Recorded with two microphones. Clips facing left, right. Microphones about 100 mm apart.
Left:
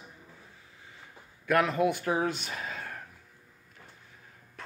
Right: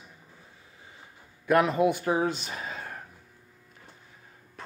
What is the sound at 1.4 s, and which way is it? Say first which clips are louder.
Speech: right 3 dB; 10° right (ahead or behind).